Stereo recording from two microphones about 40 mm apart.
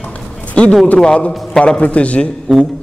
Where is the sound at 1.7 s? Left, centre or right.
Left.